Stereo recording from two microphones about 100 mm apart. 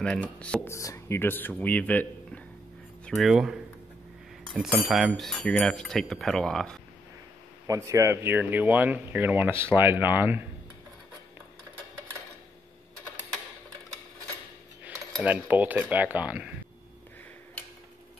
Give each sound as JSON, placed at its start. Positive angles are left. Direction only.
{"t": 0.0, "sound": "speech", "side_deg": 10}
{"t": 0.7, "sound": "speech", "side_deg": 30}
{"t": 3.1, "sound": "a sound", "side_deg": 0}
{"t": 4.8, "sound": "a sound", "side_deg": 0}
{"t": 7.6, "sound": "speech", "side_deg": -30}
{"t": 15.2, "sound": "speech", "side_deg": -15}